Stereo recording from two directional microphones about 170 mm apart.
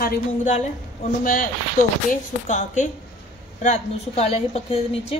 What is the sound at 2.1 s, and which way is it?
A woman's voice, 45° left (ahead or behind).